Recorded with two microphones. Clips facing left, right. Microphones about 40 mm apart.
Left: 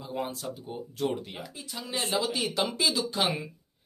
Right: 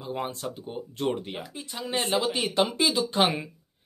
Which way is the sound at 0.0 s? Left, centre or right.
Right.